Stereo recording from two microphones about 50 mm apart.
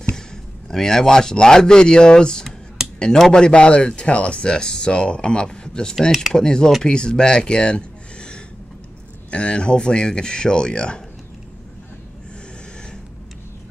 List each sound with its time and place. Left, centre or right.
0.7 s speech: centre
2.8 s a sound: centre
3.3 s speech: centre